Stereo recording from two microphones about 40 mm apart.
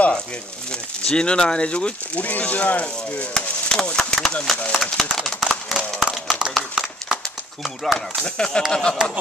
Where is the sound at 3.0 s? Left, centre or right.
Left.